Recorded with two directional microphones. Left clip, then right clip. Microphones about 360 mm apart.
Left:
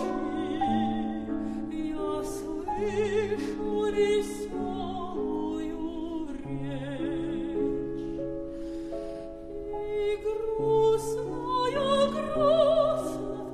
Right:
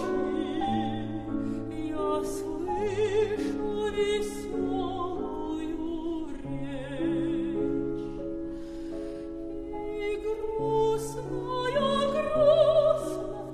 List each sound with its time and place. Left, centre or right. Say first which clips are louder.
0.4 s music: left 1 dB; left
2.8 s music: right 1 dB; left
10.7 s music: left 4 dB; left